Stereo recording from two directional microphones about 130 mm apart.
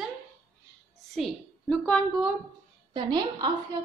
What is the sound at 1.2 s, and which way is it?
Speech, 10° left (ahead or behind).